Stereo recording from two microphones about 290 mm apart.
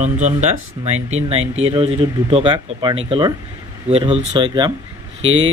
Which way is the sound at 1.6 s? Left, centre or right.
Centre.